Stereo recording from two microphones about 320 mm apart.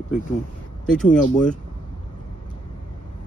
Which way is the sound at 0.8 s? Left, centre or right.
Centre.